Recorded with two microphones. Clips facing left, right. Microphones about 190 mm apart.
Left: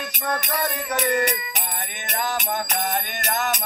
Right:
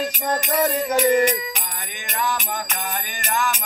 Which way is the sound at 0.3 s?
25° right (ahead or behind).